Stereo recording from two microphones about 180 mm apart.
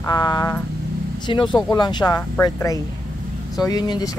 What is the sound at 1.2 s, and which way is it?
Speech, 25° left (ahead or behind).